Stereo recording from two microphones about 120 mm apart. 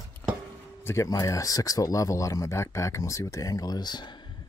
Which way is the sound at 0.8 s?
25° left (ahead or behind).